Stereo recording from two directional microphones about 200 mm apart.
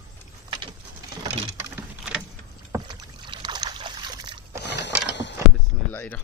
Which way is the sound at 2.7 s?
20° right (ahead or behind).